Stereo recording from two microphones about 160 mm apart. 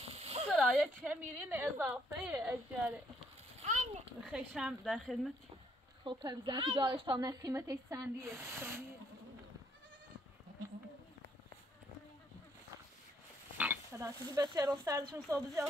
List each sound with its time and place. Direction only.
0.0 s a sound: 40° right (ahead or behind)
0.5 s a sound: centre (ahead or behind)
1.1 s a woman's voice: 10° right (ahead or behind)
3.6 s pig: 50° right (ahead or behind)
4.3 s speech: 5° right (ahead or behind)
6.0 s a woman's voice: 30° right (ahead or behind)
13.6 s speech: 15° right (ahead or behind)